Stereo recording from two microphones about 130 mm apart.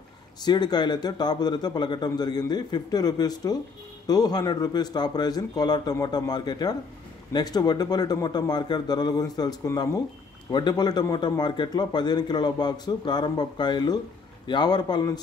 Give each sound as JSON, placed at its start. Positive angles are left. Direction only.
{"t": 0.4, "sound": "a man's voice", "side_deg": 35}